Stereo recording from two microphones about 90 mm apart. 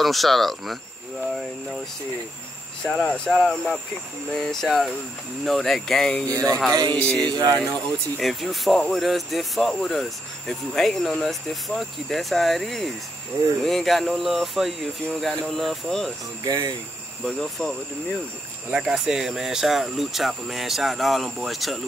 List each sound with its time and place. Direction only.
0.0 s speech: centre (ahead or behind)
2.8 s speech: 5° left (ahead or behind)
6.3 s music: 40° right (ahead or behind)
6.7 s speech: 50° right (ahead or behind)
7.0 s speech: 15° left (ahead or behind)
8.2 s speech: centre (ahead or behind)
16.4 s speech: 45° right (ahead or behind)
17.2 s speech: 5° left (ahead or behind)
18.7 s speech: 10° right (ahead or behind)